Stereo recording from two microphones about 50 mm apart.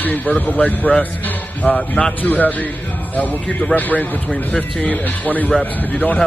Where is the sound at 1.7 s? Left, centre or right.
Centre.